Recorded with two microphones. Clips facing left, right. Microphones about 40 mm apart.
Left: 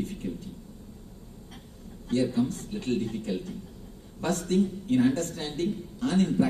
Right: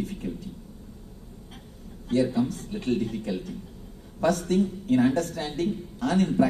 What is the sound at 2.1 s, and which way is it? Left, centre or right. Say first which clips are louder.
Speech: right 2 dB; right.